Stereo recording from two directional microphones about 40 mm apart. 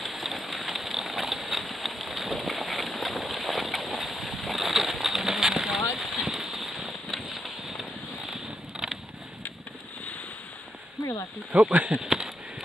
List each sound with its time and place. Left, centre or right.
0.0 s a sound: centre
8.8 s creak: centre
11.5 s speech: right
11.9 s speech: centre